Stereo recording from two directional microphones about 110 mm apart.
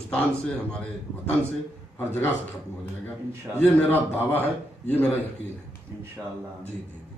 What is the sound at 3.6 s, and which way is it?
A man's voice, 15° left (ahead or behind).